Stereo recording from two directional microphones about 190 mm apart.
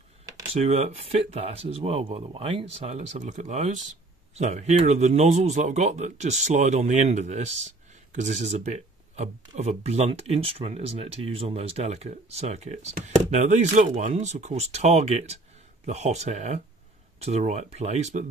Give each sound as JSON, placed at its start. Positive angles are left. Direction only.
{"t": 0.5, "sound": "speech", "side_deg": -30}